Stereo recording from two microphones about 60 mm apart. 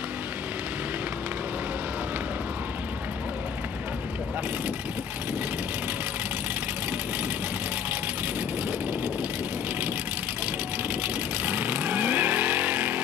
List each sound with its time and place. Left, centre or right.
11.4 s vehicle: right